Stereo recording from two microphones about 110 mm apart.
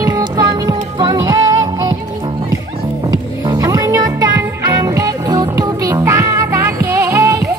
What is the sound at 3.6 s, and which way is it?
Music, 30° right (ahead or behind).